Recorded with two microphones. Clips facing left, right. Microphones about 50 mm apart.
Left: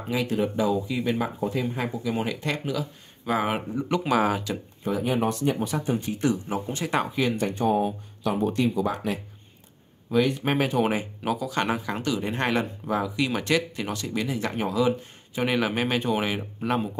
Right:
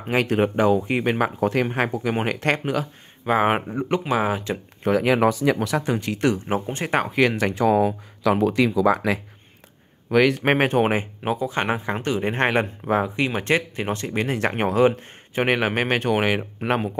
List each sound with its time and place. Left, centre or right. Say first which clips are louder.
0.1 s speech: right 5 dB; right
4.1 s speech: left 1 dB; right
4.8 s speech: right 7 dB; right
6.6 s speech: right 3 dB; right
7.1 s speech: right 5 dB; right
10.1 s speech: right 5 dB; right
10.4 s speech: right 5 dB; right
11.2 s speech: right 2 dB; right